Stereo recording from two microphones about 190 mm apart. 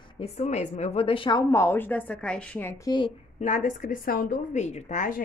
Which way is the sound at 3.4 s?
40° left (ahead or behind).